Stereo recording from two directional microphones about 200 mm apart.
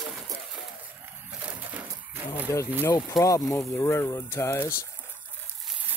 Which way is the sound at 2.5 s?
15° left (ahead or behind).